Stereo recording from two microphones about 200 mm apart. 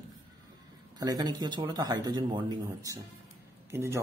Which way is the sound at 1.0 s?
20° right (ahead or behind).